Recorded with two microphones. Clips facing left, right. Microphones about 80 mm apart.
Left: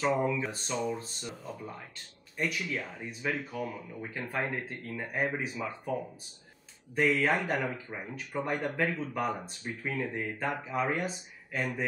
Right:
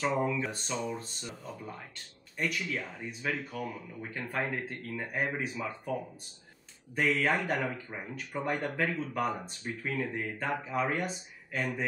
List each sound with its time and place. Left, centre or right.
0.0 s speech: centre
7.0 s speech: centre